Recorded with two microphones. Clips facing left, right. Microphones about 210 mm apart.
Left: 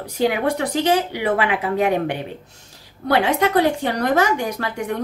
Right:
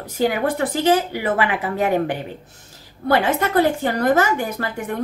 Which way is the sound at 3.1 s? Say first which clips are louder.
Left 1 dB; 5° right (ahead or behind).